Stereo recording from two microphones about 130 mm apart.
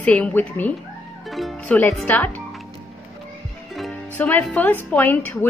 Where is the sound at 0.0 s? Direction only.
10° left (ahead or behind).